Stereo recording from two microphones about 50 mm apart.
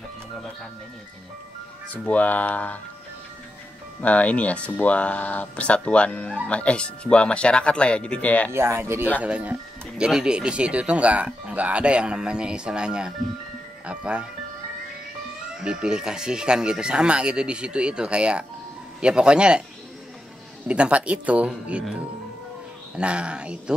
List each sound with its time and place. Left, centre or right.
2.0 s speech: left
4.0 s speech: left
8.5 s speech: right
9.2 s speech: right
9.9 s speech: centre
15.5 s speech: centre
20.6 s speech: right
22.9 s speech: right